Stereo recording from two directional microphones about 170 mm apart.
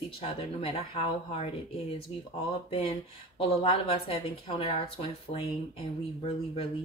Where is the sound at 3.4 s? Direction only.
35° left (ahead or behind).